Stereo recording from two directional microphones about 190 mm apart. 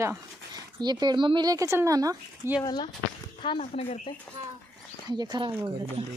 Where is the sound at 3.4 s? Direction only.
30° left (ahead or behind).